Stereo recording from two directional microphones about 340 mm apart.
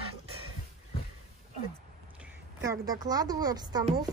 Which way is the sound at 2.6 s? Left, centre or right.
Centre.